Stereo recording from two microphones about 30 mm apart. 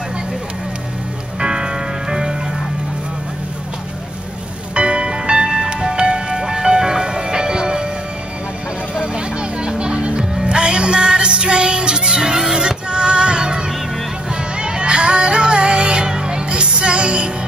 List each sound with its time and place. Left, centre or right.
1.4 s music: right
4.7 s music: right
9.0 s vehicle: right
9.8 s music: right